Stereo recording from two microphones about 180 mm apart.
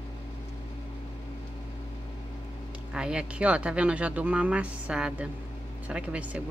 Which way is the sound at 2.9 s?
5° right (ahead or behind).